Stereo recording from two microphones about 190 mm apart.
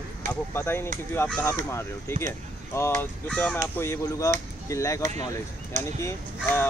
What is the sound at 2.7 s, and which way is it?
Speech, 15° left (ahead or behind).